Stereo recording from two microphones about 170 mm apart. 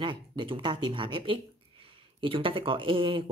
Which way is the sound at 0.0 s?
30° right (ahead or behind).